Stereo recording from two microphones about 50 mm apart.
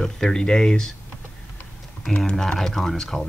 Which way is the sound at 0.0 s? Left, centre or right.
Centre.